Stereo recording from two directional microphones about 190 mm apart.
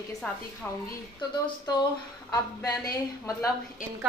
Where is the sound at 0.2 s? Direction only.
5° left (ahead or behind).